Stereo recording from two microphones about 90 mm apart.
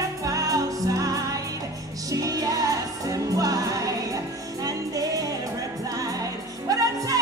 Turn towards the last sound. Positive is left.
turn(degrees=-40)  # may be behind; listen again after turning